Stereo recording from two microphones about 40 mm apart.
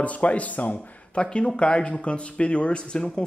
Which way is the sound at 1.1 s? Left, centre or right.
Left.